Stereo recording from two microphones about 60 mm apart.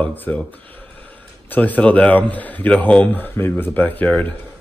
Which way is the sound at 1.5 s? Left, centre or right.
Left.